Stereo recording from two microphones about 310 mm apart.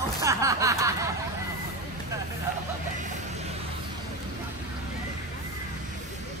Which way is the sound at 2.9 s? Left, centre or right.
Right.